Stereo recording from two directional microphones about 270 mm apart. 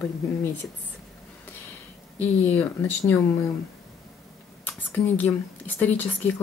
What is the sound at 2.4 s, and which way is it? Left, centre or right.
Speech, centre.